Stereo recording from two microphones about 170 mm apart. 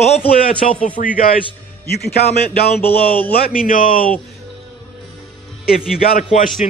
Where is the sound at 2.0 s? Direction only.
70° left (ahead or behind).